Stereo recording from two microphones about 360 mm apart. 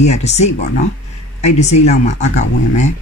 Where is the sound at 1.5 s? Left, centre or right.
Centre.